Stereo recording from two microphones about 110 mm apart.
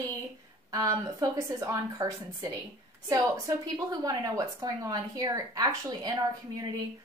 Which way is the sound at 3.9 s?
35° right (ahead or behind).